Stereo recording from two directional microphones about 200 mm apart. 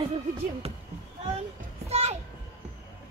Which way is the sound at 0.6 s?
30° right (ahead or behind).